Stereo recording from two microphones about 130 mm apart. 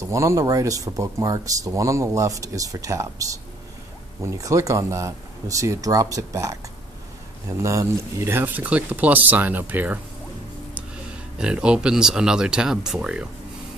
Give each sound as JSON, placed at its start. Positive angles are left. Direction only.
{"t": 0.1, "sound": "speech", "side_deg": -25}
{"t": 4.2, "sound": "speech", "side_deg": -25}
{"t": 11.3, "sound": "speech", "side_deg": -5}